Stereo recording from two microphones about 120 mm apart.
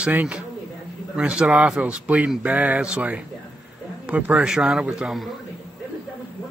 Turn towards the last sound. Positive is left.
turn(degrees=-5)  # may be behind; listen again after turning